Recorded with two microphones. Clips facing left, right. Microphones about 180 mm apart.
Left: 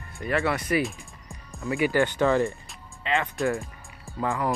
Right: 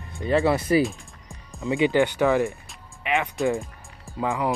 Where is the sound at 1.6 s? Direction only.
20° right (ahead or behind).